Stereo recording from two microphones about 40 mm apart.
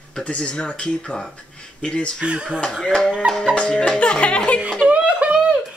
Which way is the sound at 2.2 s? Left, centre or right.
Right.